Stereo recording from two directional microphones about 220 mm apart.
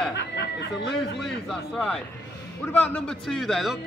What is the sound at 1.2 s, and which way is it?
A man's voice, centre (ahead or behind).